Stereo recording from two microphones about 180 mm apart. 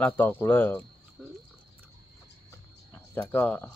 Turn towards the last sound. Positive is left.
turn(degrees=10)  # may be behind; listen again after turning